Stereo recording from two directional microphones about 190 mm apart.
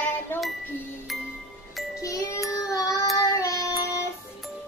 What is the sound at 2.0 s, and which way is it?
Music, 15° left (ahead or behind).